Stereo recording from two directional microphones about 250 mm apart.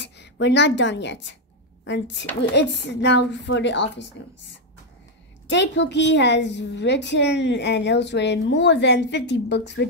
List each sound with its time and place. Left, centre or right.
0.0 s a woman's voice: left
5.5 s a woman's voice: left